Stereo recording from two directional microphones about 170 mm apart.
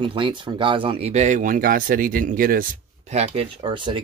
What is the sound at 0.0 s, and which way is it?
Speech, 30° right (ahead or behind).